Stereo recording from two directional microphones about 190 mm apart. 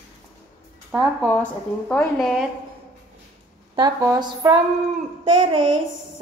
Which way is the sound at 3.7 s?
20° right (ahead or behind).